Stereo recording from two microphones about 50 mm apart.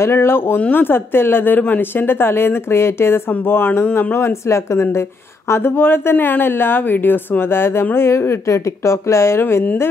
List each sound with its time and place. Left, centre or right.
0.0 s speech: left
0.6 s speech: left
4.2 s speech: left
5.5 s speech: left
9.4 s speech: left